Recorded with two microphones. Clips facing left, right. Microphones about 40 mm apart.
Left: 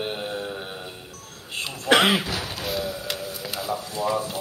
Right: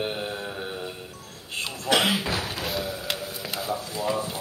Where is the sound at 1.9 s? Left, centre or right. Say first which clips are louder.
Left 4 dB; left.